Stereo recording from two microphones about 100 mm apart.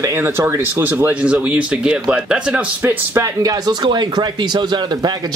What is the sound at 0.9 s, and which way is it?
Speech, 15° right (ahead or behind).